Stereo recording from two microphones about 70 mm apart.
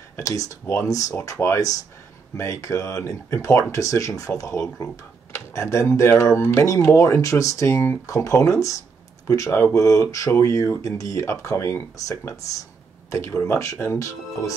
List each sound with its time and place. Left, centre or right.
0.2 s speech: left
8.1 s speech: left
9.3 s speech: left
13.1 s speech: left